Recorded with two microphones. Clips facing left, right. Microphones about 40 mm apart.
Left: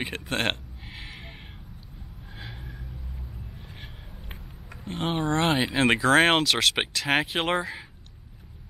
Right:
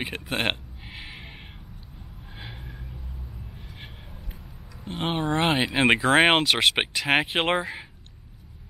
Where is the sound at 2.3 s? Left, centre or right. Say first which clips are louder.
Even; centre.